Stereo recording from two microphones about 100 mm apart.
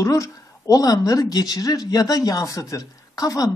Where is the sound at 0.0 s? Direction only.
30° left (ahead or behind).